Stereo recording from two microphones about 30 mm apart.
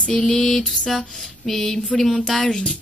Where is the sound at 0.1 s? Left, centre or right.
Left.